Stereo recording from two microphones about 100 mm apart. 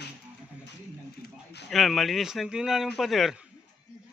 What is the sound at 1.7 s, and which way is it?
Speech, centre (ahead or behind).